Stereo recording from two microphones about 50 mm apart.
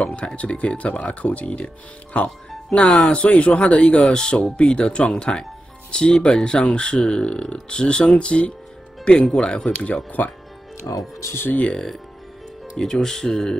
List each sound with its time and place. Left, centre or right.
0.0 s speech: left
10.2 s speech: left
10.9 s speech: left
11.7 s speech: centre